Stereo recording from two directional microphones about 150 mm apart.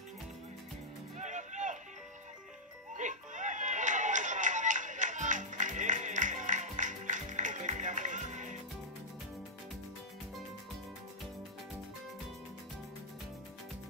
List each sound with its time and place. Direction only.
1.1 s music: 50° right (ahead or behind)
3.0 s music: 55° right (ahead or behind)